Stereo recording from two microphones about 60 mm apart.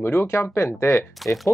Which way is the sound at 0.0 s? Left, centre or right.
Left.